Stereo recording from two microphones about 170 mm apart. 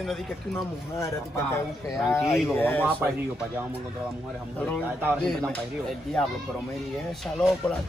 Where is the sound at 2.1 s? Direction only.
15° left (ahead or behind).